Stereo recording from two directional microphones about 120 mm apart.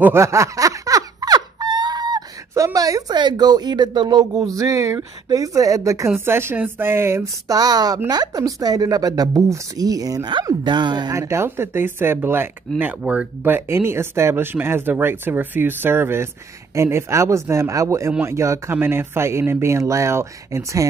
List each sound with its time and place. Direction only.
0.0 s speech: 20° right (ahead or behind)
7.5 s speech: 35° right (ahead or behind)
11.1 s speech: 25° right (ahead or behind)